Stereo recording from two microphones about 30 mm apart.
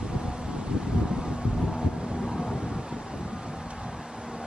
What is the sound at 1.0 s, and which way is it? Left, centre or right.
Wind, right.